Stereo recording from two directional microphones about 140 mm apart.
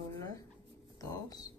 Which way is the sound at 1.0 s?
25° left (ahead or behind).